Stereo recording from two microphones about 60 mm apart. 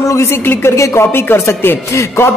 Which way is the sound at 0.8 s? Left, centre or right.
Left.